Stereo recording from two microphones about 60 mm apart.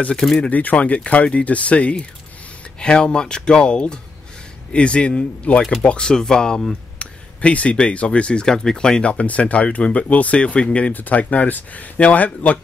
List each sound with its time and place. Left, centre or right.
0.4 s speech: left
5.6 s speech: centre
7.0 s a sound: left
7.9 s speech: centre